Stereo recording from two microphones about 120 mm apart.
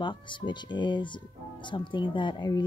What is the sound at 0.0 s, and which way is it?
Speech, 40° left (ahead or behind).